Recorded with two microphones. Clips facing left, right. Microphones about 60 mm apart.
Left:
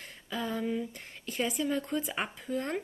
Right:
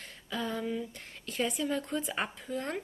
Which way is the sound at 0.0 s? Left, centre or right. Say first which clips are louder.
Even; centre.